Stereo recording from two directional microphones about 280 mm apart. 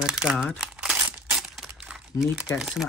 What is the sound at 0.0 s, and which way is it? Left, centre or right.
Crumpling, centre.